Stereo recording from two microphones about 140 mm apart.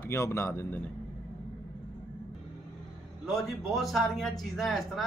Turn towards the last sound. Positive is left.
turn(degrees=0)  # may be behind; listen again after turning